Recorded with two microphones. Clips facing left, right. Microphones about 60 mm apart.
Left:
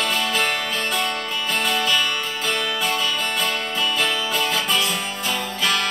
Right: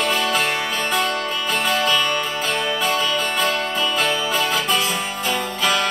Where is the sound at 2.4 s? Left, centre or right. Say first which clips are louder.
Even; centre.